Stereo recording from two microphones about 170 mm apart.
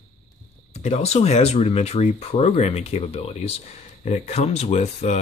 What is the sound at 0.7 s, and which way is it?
Speech, 40° left (ahead or behind).